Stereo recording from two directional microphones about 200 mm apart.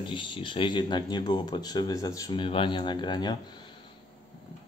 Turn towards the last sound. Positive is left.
turn(degrees=20)  # may be behind; listen again after turning